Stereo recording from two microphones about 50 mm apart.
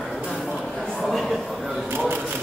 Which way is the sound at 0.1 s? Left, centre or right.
Centre.